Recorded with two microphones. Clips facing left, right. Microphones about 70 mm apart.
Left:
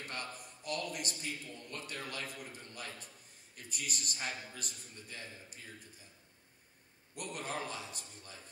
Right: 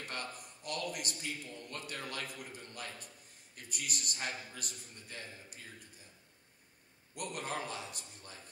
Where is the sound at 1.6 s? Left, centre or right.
Right.